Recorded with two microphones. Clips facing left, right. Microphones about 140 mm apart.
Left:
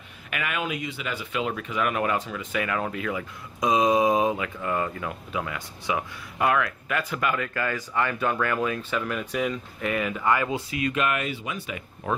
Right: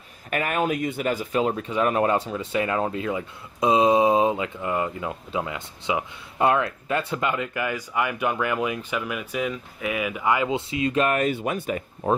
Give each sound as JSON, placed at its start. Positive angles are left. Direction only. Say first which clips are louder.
{"t": 0.3, "sound": "speech", "louder": "right 6 dB", "side_deg": -40}